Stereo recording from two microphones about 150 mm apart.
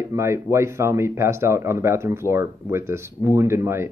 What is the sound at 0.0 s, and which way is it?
Speech, 20° right (ahead or behind).